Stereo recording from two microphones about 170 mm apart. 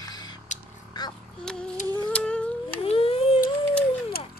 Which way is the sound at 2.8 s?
35° left (ahead or behind).